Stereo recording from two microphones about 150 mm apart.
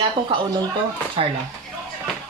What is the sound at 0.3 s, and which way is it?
Speech, 35° right (ahead or behind).